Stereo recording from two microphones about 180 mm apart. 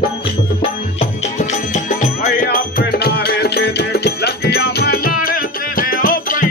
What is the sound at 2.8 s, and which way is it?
Music, 65° left (ahead or behind).